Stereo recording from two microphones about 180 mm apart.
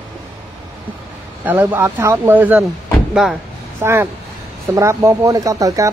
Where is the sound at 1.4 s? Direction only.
10° right (ahead or behind).